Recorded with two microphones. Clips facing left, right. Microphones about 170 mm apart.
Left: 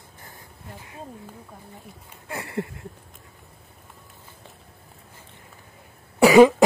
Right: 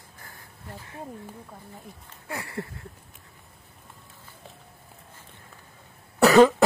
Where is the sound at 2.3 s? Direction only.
20° left (ahead or behind).